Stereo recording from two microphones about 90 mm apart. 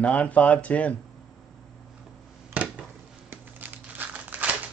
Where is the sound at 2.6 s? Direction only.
20° right (ahead or behind).